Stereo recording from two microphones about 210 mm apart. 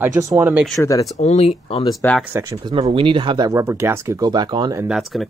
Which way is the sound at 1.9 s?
15° left (ahead or behind).